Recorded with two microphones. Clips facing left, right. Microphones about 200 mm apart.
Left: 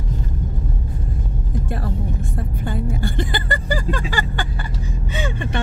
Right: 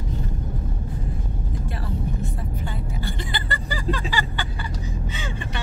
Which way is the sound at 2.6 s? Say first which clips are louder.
Left 11 dB; 50° left (ahead or behind).